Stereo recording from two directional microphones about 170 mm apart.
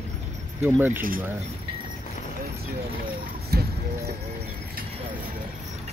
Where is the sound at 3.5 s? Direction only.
65° right (ahead or behind).